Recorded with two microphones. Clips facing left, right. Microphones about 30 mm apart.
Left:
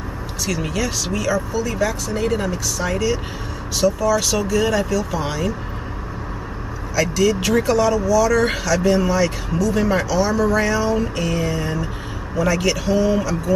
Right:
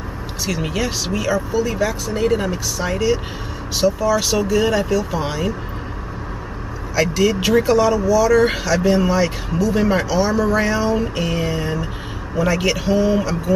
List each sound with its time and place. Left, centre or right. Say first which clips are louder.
0.5 s speech: right 1 dB; centre
7.0 s speech: right 1 dB; centre